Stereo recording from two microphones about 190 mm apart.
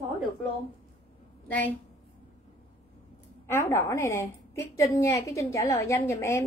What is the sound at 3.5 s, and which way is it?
A woman's voice, 10° left (ahead or behind).